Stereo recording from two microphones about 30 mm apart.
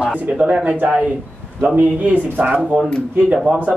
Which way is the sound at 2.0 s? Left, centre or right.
Right.